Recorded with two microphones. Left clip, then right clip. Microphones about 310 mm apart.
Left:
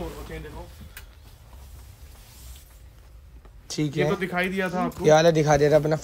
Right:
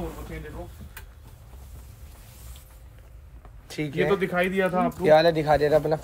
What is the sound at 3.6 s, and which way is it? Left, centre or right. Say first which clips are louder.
Speech: left 2 dB; left.